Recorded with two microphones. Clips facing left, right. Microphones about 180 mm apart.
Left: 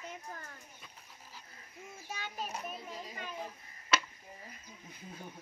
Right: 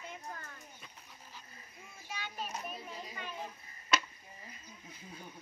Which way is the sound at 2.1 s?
45° left (ahead or behind).